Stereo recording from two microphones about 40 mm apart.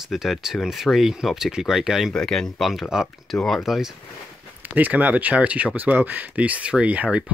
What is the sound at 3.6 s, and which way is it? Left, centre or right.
Speech, centre.